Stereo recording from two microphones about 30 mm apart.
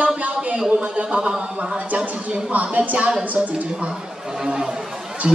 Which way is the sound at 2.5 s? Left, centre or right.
Right.